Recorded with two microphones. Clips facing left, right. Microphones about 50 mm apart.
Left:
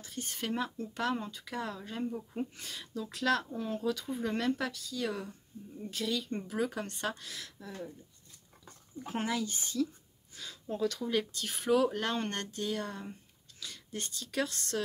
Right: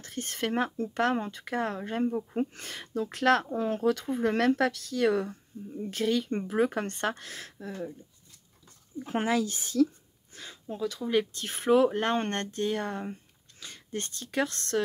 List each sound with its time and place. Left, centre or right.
0.0 s speech: right
4.2 s speech: right
5.8 s speech: right
9.1 s speech: right
10.3 s a sound: right
10.7 s speech: centre
11.1 s speech: right